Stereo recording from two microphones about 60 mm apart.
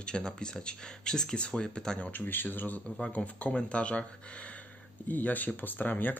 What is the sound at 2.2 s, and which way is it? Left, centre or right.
Speech, left.